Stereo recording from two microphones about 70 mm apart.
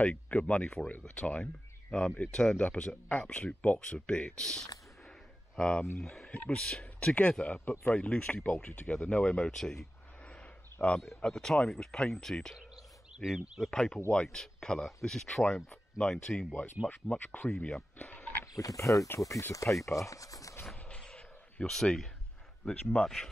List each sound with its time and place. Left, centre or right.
0.0 s speech: centre
10.2 s a sound: centre
11.1 s speech: centre
18.4 s speech: left
20.7 s a sound: centre
22.7 s speech: centre